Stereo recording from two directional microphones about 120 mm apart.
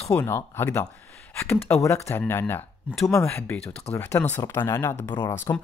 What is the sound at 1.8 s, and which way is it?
Speech, 25° left (ahead or behind).